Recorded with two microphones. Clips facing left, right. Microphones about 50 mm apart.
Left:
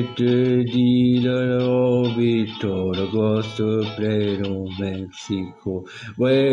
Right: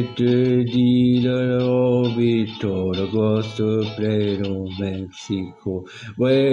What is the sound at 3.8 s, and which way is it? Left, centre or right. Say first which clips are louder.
Mantra: even; centre.